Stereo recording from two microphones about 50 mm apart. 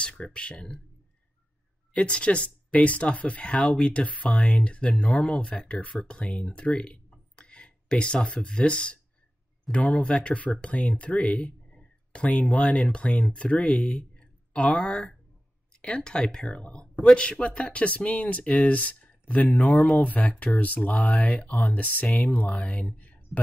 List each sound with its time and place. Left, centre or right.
0.0 s speech: left
2.0 s speech: left